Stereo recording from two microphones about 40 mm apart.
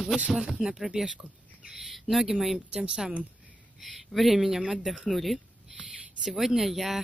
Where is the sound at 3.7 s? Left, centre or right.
Centre.